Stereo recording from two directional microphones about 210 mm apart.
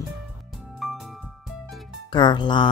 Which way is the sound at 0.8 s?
Centre (ahead or behind).